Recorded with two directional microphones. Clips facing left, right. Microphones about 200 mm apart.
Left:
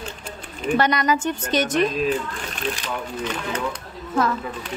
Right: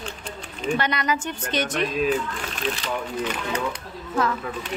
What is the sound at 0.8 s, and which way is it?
A woman's voice, 40° left (ahead or behind).